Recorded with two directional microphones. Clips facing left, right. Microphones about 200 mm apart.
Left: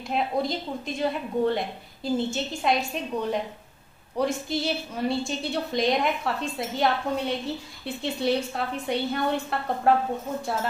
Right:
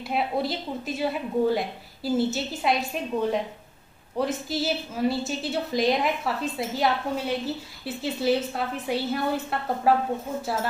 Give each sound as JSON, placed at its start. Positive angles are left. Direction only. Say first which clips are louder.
{"t": 0.1, "sound": "a woman's voice", "louder": "even", "side_deg": -5}